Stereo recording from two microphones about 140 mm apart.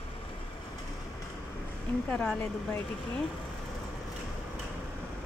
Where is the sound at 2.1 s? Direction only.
5° left (ahead or behind).